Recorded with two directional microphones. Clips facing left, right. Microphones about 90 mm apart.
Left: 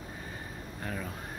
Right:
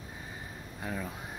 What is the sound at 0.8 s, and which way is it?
Speech, 10° right (ahead or behind).